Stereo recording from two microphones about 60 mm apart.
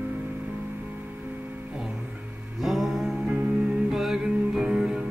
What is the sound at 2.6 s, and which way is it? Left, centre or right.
Music, centre.